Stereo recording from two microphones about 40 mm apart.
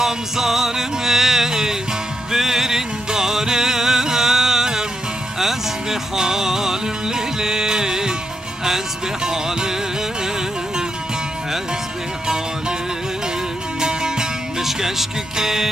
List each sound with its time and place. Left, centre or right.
0.0 s music: centre
13.7 s music: centre